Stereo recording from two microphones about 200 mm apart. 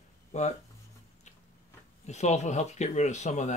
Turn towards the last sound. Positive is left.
turn(degrees=35)  # may be behind; listen again after turning